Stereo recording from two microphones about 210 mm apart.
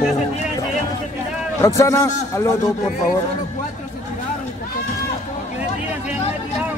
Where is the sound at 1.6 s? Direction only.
15° left (ahead or behind).